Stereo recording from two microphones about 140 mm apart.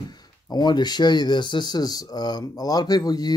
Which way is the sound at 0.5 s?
30° left (ahead or behind).